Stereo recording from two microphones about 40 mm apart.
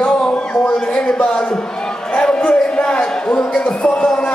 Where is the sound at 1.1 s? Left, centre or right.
Left.